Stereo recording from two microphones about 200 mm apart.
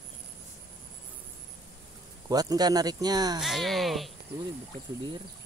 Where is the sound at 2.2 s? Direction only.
20° right (ahead or behind).